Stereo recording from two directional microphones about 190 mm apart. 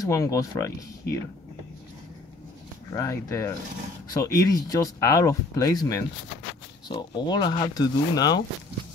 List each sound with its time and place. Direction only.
0.0 s speech: 15° left (ahead or behind)
2.9 s speech: 15° left (ahead or behind)